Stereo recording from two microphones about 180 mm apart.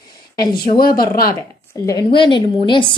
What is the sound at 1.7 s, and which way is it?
A woman's voice, 20° left (ahead or behind).